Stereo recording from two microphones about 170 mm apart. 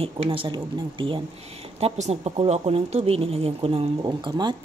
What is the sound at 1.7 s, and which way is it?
Speech, 40° right (ahead or behind).